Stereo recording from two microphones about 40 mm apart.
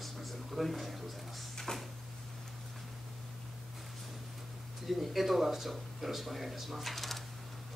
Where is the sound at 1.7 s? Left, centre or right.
Centre.